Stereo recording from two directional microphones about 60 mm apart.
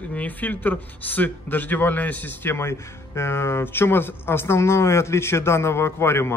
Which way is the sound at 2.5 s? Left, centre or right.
Left.